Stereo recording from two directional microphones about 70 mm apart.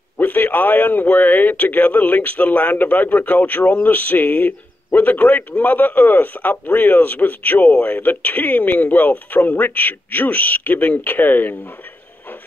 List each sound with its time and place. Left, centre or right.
0.2 s a man's voice: left